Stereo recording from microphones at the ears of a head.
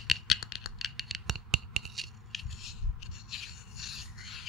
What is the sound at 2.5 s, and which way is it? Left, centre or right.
Rub, left.